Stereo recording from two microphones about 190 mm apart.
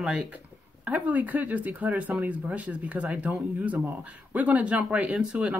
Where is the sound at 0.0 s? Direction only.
Centre (ahead or behind).